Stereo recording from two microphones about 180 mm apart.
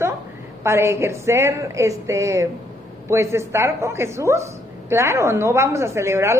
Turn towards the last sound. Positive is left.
turn(degrees=-15)  # may be behind; listen again after turning